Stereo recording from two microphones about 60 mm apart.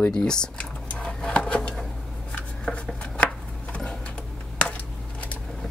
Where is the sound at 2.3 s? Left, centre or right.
Left.